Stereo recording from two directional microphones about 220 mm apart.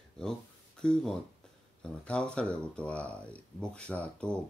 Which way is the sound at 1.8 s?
5° left (ahead or behind).